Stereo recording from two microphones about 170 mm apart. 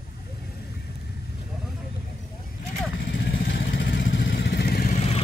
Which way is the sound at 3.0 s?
90° left.